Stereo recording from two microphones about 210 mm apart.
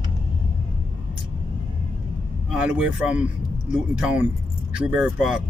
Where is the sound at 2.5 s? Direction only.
5° right (ahead or behind).